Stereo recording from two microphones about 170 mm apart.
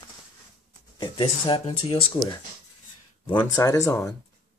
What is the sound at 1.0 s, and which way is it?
Speech, 30° left (ahead or behind).